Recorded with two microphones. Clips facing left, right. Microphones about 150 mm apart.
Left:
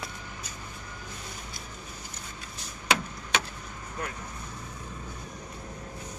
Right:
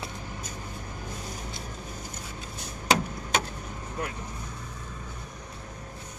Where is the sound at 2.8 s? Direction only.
40° right (ahead or behind).